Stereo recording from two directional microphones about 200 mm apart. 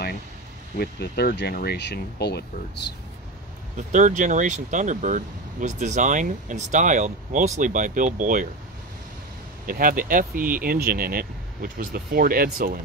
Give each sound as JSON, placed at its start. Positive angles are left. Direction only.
{"t": 0.7, "sound": "speech", "side_deg": 55}
{"t": 3.7, "sound": "speech", "side_deg": -40}
{"t": 9.7, "sound": "speech", "side_deg": -45}